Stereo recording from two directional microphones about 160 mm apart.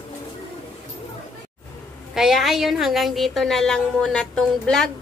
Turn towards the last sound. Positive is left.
turn(degrees=5)  # may be behind; listen again after turning